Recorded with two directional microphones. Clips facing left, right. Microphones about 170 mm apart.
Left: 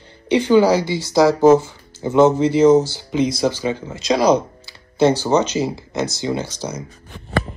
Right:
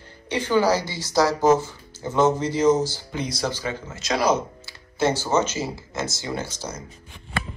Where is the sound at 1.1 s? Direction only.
10° left (ahead or behind).